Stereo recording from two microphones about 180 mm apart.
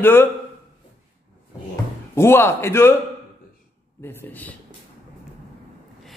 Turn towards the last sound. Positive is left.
turn(degrees=10)  # may be behind; listen again after turning